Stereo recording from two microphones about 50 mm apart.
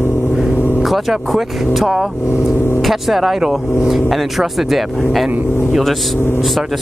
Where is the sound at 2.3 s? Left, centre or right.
Left.